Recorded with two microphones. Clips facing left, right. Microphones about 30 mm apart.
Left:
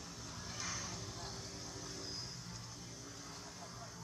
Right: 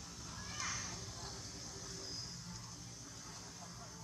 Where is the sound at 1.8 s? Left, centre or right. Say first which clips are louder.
Left 1 dB; left.